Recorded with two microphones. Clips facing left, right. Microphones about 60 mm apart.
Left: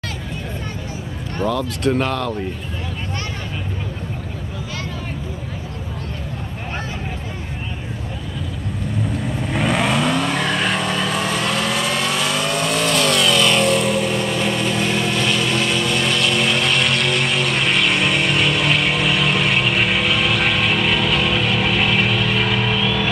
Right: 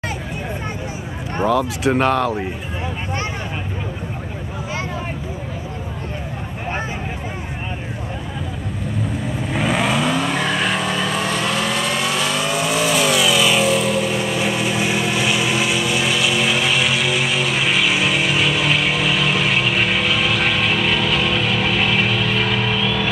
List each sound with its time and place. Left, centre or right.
1.5 s speech: centre
9.1 s vehicle: centre